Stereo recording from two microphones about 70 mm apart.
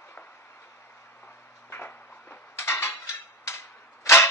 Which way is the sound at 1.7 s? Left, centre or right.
Left.